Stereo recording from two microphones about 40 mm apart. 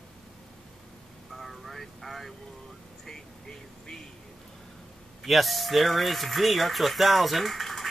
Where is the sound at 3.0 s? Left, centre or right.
Centre.